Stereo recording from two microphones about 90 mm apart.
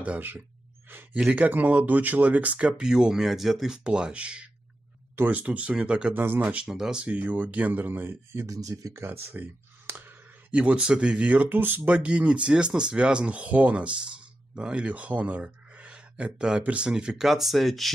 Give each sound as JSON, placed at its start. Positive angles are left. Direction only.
{"t": 0.0, "sound": "speech", "side_deg": -20}
{"t": 8.5, "sound": "speech", "side_deg": -40}